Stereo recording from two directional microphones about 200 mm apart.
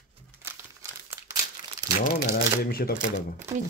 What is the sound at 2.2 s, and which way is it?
Speech, 50° left (ahead or behind).